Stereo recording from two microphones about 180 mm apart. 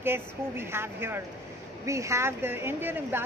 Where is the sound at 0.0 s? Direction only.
15° right (ahead or behind).